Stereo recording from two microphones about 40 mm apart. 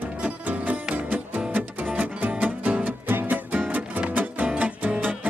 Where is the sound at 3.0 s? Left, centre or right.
Right.